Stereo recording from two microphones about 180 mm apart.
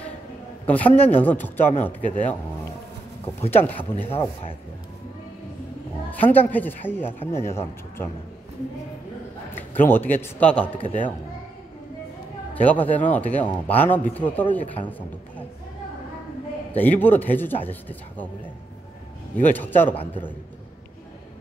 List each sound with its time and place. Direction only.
0.7 s speech: 10° left (ahead or behind)
3.4 s speech: 10° left (ahead or behind)
4.0 s speech: 30° left (ahead or behind)
6.0 s speech: 10° left (ahead or behind)
9.6 s speech: 10° left (ahead or behind)
10.8 s speech: 35° left (ahead or behind)
12.5 s speech: 10° left (ahead or behind)
16.7 s speech: 10° left (ahead or behind)
19.4 s speech: 10° left (ahead or behind)